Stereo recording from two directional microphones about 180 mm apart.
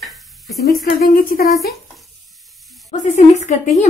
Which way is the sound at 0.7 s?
55° left (ahead or behind).